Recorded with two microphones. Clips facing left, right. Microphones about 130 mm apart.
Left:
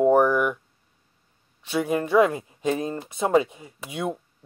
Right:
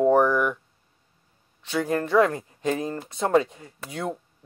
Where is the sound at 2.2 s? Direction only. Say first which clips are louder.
Left 1 dB; 15° left (ahead or behind).